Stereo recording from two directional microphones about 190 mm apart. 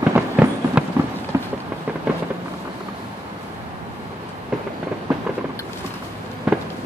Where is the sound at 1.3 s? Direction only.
15° right (ahead or behind).